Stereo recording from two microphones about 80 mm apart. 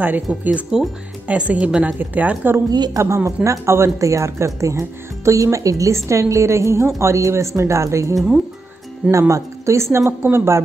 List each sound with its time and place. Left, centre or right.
0.0 s a woman's voice: right
2.7 s a woman's voice: right
3.0 s speech: right
9.3 s speech: right